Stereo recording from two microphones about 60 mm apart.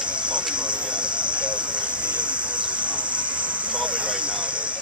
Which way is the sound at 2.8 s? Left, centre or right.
Right.